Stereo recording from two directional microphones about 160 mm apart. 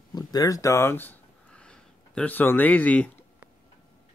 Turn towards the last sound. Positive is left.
turn(degrees=10)  # may be behind; listen again after turning